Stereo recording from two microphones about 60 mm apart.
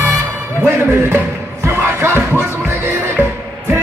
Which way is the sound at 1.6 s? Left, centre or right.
Right.